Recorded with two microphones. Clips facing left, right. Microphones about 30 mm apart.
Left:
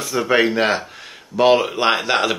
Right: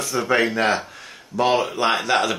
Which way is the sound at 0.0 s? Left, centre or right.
Centre.